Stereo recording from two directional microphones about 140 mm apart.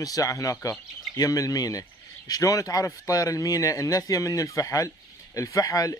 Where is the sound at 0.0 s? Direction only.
25° left (ahead or behind).